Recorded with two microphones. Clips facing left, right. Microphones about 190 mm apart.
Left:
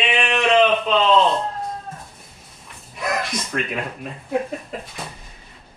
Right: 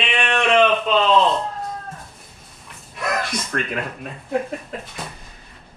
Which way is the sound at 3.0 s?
Centre (ahead or behind).